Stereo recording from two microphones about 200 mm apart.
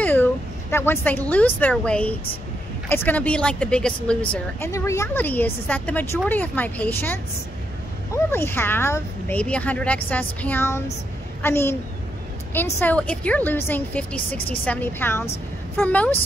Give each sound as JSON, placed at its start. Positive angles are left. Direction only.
{"t": 0.0, "sound": "a woman's voice", "side_deg": 10}
{"t": 8.3, "sound": "a woman's voice", "side_deg": 10}